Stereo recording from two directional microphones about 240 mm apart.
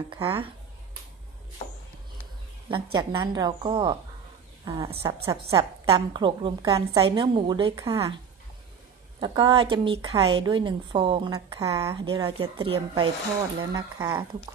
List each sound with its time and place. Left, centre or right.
0.1 s a woman's voice: centre
2.7 s a woman's voice: centre
9.2 s a woman's voice: centre